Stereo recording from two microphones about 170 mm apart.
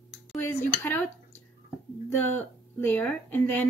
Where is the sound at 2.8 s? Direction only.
10° left (ahead or behind).